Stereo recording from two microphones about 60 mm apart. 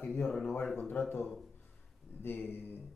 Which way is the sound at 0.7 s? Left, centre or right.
Left.